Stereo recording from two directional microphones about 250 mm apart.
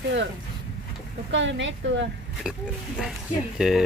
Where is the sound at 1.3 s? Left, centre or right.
Right.